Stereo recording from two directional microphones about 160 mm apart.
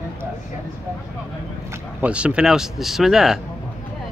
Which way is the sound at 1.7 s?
10° right (ahead or behind).